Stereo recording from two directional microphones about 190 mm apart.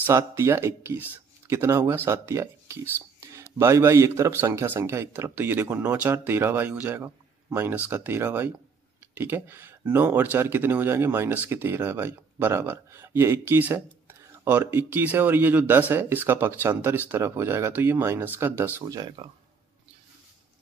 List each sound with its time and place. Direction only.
0.0 s speech: 15° right (ahead or behind)
3.2 s a sound: 15° right (ahead or behind)
3.5 s speech: 15° right (ahead or behind)